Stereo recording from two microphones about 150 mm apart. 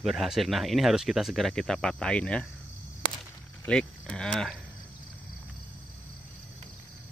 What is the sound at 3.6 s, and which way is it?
Speech, 5° left (ahead or behind).